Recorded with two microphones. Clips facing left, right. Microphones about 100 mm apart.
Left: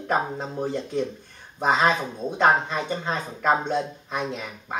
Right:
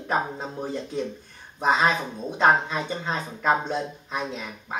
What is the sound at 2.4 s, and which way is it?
Speech, centre (ahead or behind).